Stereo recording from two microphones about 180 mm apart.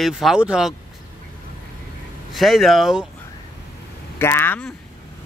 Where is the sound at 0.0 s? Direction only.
Centre (ahead or behind).